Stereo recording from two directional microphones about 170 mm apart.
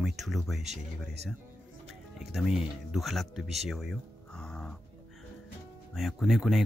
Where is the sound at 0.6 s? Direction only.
40° right (ahead or behind).